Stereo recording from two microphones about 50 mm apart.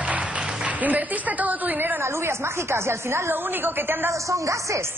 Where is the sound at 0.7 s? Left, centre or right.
Right.